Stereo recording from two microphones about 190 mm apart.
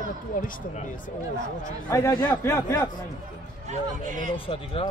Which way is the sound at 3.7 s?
40° right (ahead or behind).